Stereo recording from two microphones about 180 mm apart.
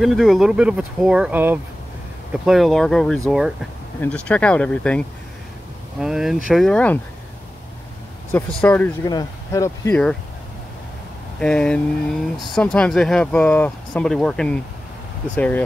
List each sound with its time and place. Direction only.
0.0 s speech: centre (ahead or behind)
8.3 s speech: 10° left (ahead or behind)
9.0 s speech: 20° left (ahead or behind)
11.3 s speech: 5° left (ahead or behind)